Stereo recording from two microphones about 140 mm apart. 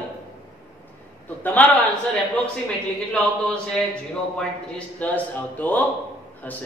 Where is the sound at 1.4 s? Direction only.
10° left (ahead or behind).